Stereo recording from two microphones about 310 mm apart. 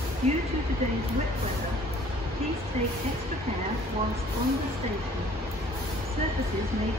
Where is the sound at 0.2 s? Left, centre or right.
Right.